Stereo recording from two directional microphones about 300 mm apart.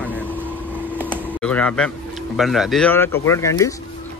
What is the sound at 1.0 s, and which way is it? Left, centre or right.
Speech, centre.